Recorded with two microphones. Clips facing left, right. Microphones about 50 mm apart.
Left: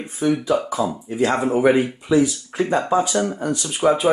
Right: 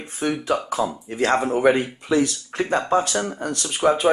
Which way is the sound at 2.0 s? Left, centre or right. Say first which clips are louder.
Left 3 dB; right.